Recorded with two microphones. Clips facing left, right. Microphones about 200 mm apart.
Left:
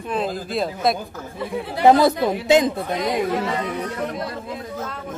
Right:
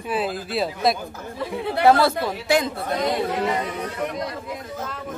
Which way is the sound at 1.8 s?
20° left (ahead or behind).